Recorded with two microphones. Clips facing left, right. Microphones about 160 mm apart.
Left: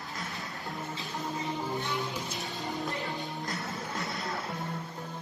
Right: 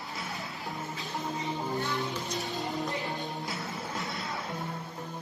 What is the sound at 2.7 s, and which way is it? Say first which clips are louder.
Music: right 1 dB; centre (ahead or behind).